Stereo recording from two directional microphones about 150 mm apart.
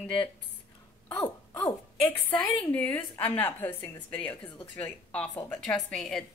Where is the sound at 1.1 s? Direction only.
25° left (ahead or behind).